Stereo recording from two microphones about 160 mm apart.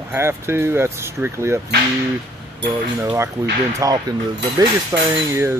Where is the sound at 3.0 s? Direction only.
15° right (ahead or behind).